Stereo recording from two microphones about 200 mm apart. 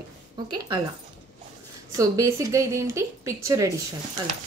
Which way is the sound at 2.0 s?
15° right (ahead or behind).